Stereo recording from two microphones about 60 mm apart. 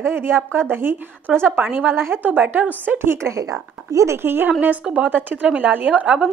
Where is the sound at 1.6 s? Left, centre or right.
Right.